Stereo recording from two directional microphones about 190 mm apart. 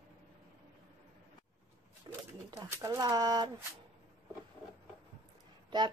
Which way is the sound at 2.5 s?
15° right (ahead or behind).